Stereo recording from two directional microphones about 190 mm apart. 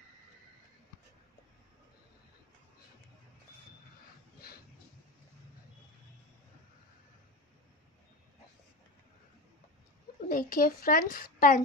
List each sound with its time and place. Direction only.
10.2 s a woman's voice: 45° left (ahead or behind)